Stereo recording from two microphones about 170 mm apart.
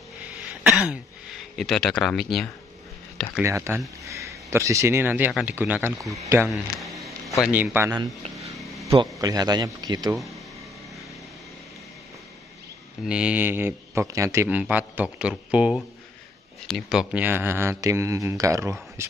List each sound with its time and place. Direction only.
0.2 s throat clearing: 5° right (ahead or behind)
1.6 s speech: centre (ahead or behind)
3.4 s speech: 15° right (ahead or behind)
6.5 s a sound: centre (ahead or behind)
7.4 s speech: 5° right (ahead or behind)
9.2 s speech: 20° right (ahead or behind)
13.0 s speech: 5° right (ahead or behind)